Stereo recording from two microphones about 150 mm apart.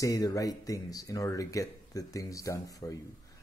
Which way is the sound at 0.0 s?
25° left (ahead or behind).